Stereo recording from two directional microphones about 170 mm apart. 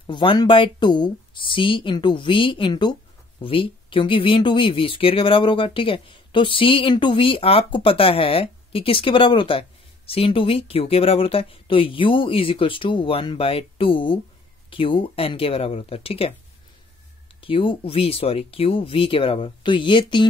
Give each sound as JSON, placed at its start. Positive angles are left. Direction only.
{"t": 0.0, "sound": "speech", "side_deg": 30}
{"t": 17.4, "sound": "speech", "side_deg": 30}